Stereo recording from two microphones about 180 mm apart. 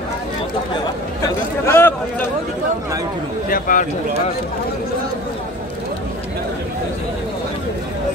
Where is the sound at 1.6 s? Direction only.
10° left (ahead or behind).